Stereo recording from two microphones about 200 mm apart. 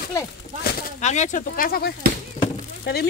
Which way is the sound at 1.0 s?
35° left (ahead or behind).